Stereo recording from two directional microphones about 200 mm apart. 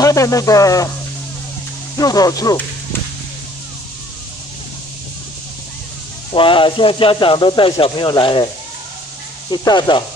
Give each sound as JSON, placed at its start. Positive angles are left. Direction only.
{"t": 0.0, "sound": "speech", "side_deg": 15}
{"t": 2.0, "sound": "speech", "side_deg": 20}
{"t": 6.3, "sound": "speech", "side_deg": 25}
{"t": 9.5, "sound": "speech", "side_deg": 20}